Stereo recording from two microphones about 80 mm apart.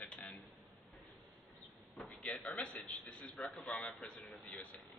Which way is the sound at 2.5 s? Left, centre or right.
Centre.